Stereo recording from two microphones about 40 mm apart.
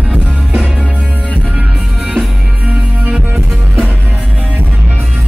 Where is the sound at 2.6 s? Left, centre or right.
Right.